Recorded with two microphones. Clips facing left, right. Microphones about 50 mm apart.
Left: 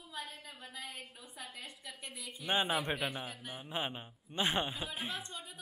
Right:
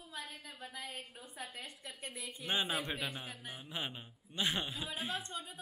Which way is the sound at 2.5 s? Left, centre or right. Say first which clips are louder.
Left 3 dB; left.